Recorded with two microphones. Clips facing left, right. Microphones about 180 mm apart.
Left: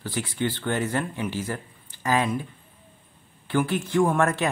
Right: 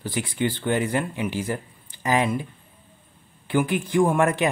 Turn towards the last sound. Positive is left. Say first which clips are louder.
# right 2 dB
turn(degrees=-15)  # may be behind; listen again after turning